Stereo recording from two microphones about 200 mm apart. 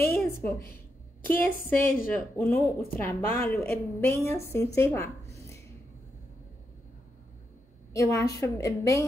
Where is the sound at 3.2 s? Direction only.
45° left (ahead or behind).